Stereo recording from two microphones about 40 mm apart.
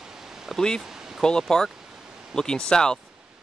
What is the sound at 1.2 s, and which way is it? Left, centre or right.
Speech, centre.